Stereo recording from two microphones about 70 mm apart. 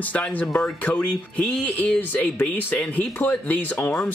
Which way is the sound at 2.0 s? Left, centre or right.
Left.